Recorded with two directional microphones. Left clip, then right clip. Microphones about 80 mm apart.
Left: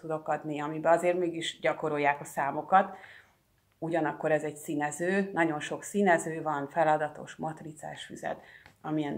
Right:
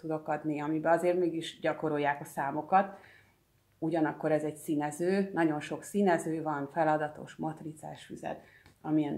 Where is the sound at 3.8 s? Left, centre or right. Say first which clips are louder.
Left 1 dB; centre.